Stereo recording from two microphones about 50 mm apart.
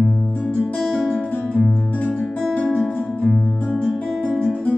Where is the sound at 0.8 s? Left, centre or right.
Centre.